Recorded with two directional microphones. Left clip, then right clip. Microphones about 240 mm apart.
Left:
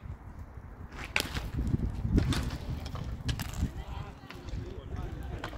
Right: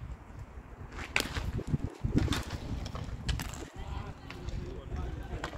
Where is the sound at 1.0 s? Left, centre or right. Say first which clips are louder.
Even; centre.